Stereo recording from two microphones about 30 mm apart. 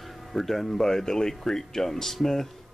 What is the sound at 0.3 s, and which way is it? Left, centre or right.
Speech, centre.